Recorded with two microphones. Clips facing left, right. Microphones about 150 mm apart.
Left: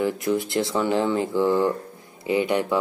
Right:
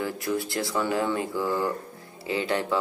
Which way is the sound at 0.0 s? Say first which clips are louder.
Left 5 dB; 20° left (ahead or behind).